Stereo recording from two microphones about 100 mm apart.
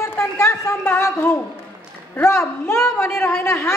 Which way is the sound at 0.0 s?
25° left (ahead or behind).